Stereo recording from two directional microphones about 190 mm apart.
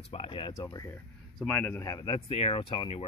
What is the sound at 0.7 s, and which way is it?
Speech, 15° left (ahead or behind).